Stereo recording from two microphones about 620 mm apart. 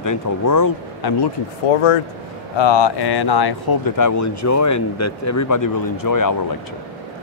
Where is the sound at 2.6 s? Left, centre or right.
Left.